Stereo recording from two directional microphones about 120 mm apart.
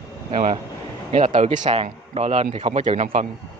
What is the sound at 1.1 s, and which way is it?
Speech, 70° right (ahead or behind).